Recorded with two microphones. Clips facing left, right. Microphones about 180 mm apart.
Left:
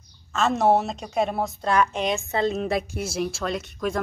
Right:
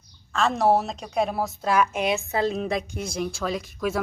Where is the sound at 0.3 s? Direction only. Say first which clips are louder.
Left 1 dB; centre (ahead or behind).